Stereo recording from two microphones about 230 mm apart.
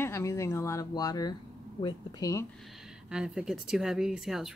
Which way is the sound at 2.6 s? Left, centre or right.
Centre.